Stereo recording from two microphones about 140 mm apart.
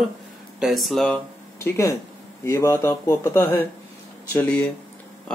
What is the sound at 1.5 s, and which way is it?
Speech, 20° left (ahead or behind).